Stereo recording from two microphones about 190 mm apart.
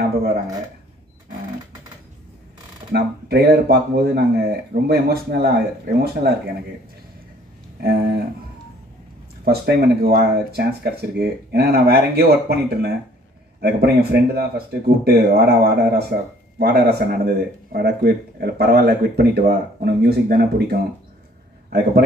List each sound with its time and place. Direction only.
2.9 s speech: 60° right (ahead or behind)
7.8 s speech: 55° right (ahead or behind)
9.4 s a man's voice: 55° right (ahead or behind)